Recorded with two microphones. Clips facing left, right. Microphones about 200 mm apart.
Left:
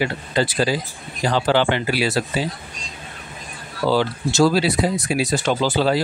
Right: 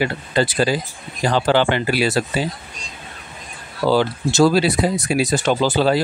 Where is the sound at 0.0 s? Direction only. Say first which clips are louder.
Right 2 dB; 50° right (ahead or behind).